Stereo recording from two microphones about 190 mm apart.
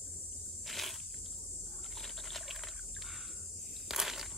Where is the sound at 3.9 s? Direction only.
Centre (ahead or behind).